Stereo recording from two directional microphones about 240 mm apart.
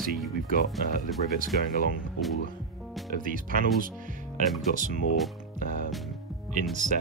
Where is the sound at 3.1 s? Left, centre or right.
Right.